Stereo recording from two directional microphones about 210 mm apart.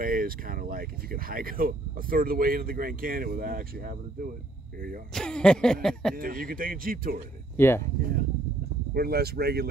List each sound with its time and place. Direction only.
0.0 s speech: 45° right (ahead or behind)
5.1 s a sound: 5° left (ahead or behind)
6.1 s speech: 45° right (ahead or behind)
7.5 s speech: 10° left (ahead or behind)
8.0 s speech: 45° right (ahead or behind)